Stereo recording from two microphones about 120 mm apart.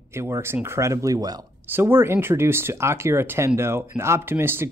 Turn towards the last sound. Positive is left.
turn(degrees=-20)  # may be behind; listen again after turning